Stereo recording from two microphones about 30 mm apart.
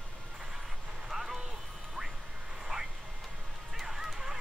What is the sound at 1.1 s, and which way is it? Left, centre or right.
Vehicle, centre.